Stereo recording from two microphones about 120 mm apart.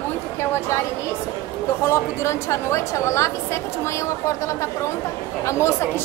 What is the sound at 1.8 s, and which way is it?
A woman's voice, 25° left (ahead or behind).